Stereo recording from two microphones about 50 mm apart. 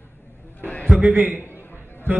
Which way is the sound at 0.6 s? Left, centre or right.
Left.